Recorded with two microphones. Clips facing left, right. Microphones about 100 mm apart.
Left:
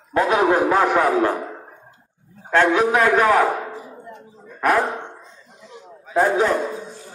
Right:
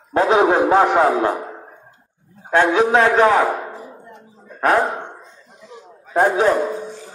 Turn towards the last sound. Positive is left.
turn(degrees=-15)  # may be behind; listen again after turning